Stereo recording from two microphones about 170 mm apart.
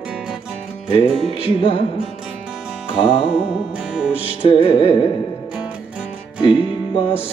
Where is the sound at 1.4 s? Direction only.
30° left (ahead or behind).